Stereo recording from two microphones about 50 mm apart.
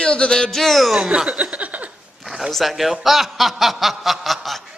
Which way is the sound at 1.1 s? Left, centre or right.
Right.